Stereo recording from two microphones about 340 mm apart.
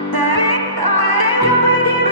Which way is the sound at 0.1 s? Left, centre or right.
Right.